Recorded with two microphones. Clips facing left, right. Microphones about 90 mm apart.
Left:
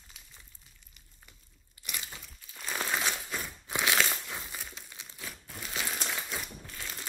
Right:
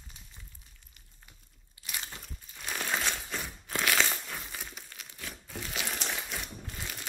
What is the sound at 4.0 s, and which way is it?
Crumpling, 5° left (ahead or behind).